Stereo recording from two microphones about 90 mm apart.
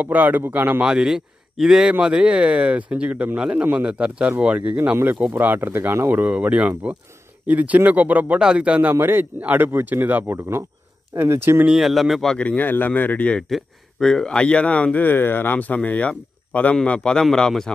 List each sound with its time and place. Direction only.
0.0 s speech: 20° right (ahead or behind)
0.8 s speech: 5° right (ahead or behind)
8.9 s speech: 25° right (ahead or behind)
11.6 s speech: 5° right (ahead or behind); by 13.4 s 15° left (ahead or behind)
13.4 s speech: 5° left (ahead or behind)